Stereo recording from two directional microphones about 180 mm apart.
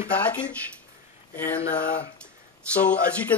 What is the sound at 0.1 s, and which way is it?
Speech, 10° left (ahead or behind).